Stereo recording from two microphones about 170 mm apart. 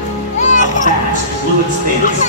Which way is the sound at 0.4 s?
45° left (ahead or behind).